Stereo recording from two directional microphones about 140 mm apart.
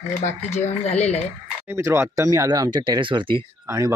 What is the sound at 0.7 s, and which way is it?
Speech, 50° left (ahead or behind).